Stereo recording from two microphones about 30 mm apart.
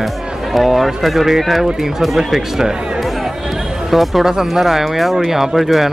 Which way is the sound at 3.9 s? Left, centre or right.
Centre.